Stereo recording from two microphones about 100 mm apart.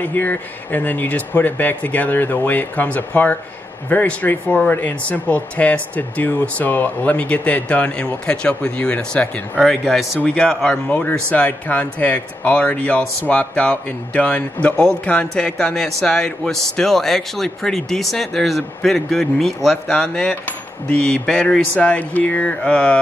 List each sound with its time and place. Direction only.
0.0 s speech: 20° left (ahead or behind)